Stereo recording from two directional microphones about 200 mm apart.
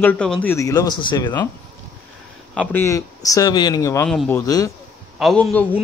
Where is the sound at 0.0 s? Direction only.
5° left (ahead or behind).